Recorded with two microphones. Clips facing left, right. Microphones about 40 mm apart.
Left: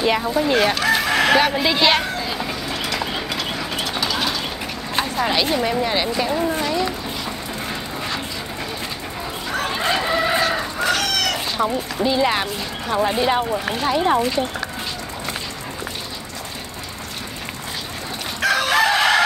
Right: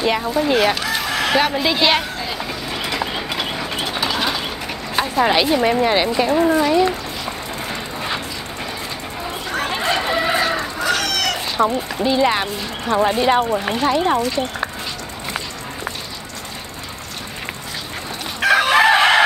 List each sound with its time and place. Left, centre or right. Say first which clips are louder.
0.0 s speech: even; centre
1.3 s a sound: left 1 dB; centre
3.4 s bird: right 1 dB; centre
4.9 s speech: right 4 dB; centre
9.8 s chicken: even; centre
10.8 s fowl: even; centre
12.0 s speech: right 2 dB; centre
18.4 s chicken: right 4 dB; right